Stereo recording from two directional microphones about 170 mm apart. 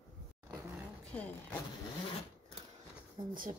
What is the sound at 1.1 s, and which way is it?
Speech, 10° left (ahead or behind).